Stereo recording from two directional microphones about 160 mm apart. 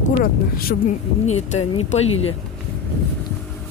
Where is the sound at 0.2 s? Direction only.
65° left (ahead or behind).